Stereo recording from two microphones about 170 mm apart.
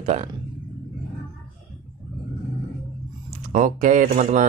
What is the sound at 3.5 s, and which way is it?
Speech, 50° right (ahead or behind).